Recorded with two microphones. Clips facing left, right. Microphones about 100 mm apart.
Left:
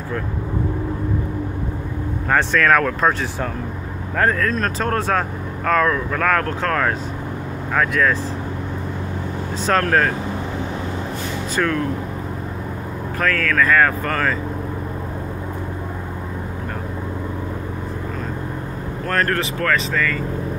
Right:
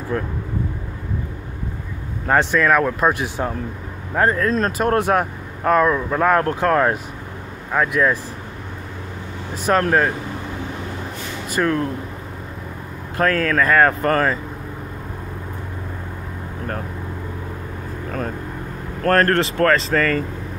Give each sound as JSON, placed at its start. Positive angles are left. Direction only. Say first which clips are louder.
{"t": 2.5, "sound": "speech", "louder": "even", "side_deg": -15}
{"t": 4.4, "sound": "speech", "louder": "right 2 dB", "side_deg": -30}
{"t": 4.7, "sound": "speech", "louder": "right 3 dB", "side_deg": -15}
{"t": 9.7, "sound": "speech", "louder": "right 1 dB", "side_deg": -15}
{"t": 11.6, "sound": "speech", "louder": "right 1 dB", "side_deg": -15}
{"t": 13.2, "sound": "speech", "louder": "right 2 dB", "side_deg": -30}
{"t": 19.0, "sound": "speech", "louder": "right 5 dB", "side_deg": -40}